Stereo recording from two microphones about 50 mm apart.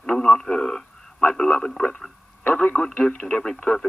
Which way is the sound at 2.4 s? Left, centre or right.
Left.